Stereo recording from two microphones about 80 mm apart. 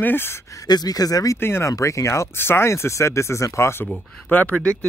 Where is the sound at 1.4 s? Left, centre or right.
Left.